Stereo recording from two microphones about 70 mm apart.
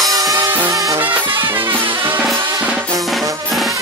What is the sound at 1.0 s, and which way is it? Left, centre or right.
Music, right.